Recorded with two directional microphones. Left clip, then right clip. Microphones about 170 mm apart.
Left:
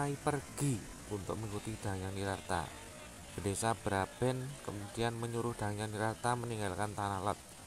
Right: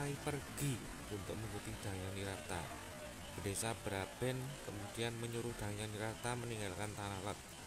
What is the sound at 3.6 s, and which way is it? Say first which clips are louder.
Speech: left 10 dB; 15° left (ahead or behind).